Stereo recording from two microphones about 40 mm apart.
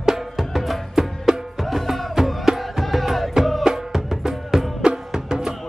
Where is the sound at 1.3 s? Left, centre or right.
Centre.